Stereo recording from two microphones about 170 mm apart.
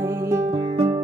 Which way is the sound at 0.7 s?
30° right (ahead or behind).